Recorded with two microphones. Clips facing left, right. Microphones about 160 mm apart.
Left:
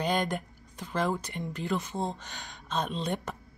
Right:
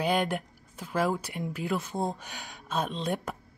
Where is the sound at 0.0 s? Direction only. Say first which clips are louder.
Right 2 dB; 5° right (ahead or behind).